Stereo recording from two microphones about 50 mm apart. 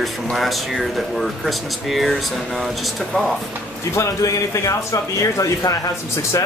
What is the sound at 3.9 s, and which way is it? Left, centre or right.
A man's voice, left.